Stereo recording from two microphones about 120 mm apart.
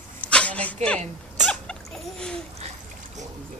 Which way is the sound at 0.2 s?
10° left (ahead or behind).